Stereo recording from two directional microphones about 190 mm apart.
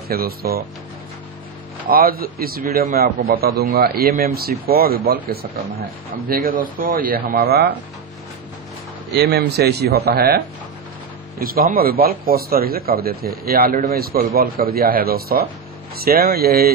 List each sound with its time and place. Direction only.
0.1 s a man's voice: 50° right (ahead or behind)
1.9 s a man's voice: 50° right (ahead or behind)
6.2 s a man's voice: 50° right (ahead or behind)
7.4 s speech: 60° right (ahead or behind)
9.1 s a man's voice: 60° right (ahead or behind)